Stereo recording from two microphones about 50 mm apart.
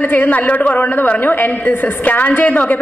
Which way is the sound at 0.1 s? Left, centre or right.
Left.